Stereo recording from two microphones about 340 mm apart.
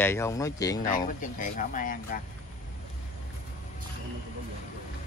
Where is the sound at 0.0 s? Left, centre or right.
Centre.